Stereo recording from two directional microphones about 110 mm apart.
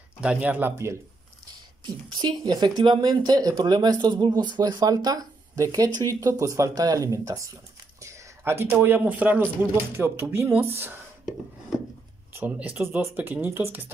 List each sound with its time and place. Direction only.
0.2 s speech: 10° right (ahead or behind)
1.5 s a sound: 40° right (ahead or behind)
2.4 s speech: 40° right (ahead or behind); by 11.0 s 20° right (ahead or behind)
12.4 s speech: 15° right (ahead or behind)